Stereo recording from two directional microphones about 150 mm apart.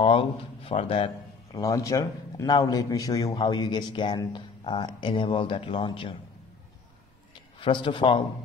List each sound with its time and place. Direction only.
0.0 s speech: 35° left (ahead or behind)
1.5 s a man's voice: 20° left (ahead or behind)
7.6 s speech: 30° left (ahead or behind)